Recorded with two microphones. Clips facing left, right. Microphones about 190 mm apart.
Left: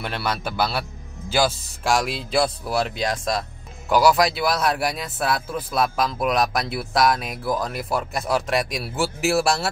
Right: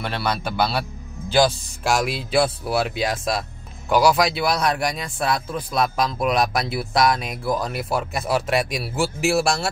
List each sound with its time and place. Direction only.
0.0 s speech: 5° left (ahead or behind)